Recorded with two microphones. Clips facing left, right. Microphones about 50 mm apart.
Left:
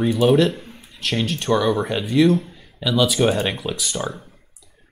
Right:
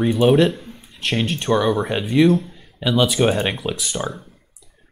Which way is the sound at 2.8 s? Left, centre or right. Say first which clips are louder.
Right 1 dB; centre.